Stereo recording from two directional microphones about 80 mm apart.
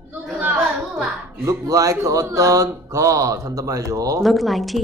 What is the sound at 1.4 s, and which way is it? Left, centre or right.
Speech, right.